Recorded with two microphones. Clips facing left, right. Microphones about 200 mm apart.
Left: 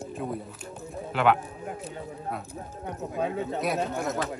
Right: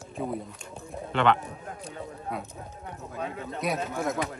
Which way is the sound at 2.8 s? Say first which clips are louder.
Left 6 dB; 30° left (ahead or behind).